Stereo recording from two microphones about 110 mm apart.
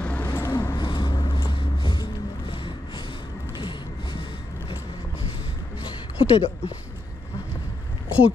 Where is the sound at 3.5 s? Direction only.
50° left (ahead or behind).